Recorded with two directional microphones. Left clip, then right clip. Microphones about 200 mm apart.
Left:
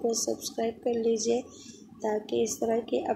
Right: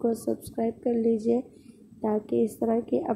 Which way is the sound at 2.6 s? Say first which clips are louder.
Right 1 dB; 35° right (ahead or behind).